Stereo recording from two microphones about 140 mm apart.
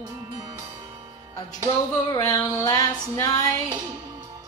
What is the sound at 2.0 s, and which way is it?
Music, 25° left (ahead or behind).